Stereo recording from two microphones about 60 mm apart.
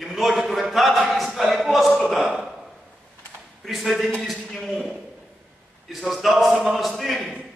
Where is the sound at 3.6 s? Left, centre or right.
Centre.